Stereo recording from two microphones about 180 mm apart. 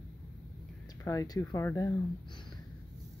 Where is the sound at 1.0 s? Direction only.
20° left (ahead or behind).